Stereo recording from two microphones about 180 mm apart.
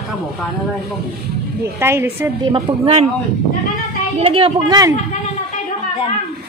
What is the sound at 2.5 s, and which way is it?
Speech, 30° right (ahead or behind).